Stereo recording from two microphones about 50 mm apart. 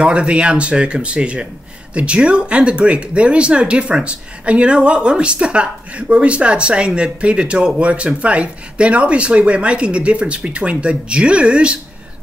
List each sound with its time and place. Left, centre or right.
0.0 s speech: right